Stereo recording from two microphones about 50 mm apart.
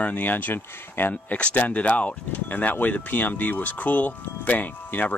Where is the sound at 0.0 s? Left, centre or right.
Left.